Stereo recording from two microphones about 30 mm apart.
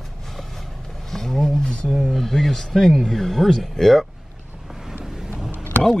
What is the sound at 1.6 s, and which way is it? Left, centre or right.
Speech, left.